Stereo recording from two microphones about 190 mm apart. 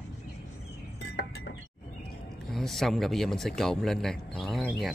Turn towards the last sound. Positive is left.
turn(degrees=0)  # may be behind; listen again after turning